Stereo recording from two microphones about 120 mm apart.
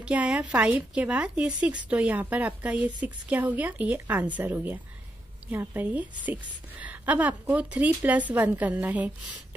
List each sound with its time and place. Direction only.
0.0 s a woman's voice: 10° right (ahead or behind)